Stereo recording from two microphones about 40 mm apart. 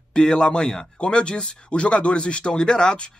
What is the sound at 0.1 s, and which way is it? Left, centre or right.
Speech, left.